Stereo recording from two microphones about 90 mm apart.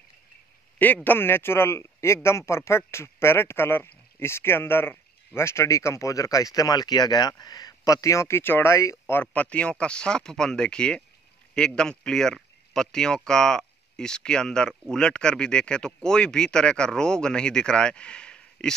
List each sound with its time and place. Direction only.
1.0 s speech: 25° left (ahead or behind)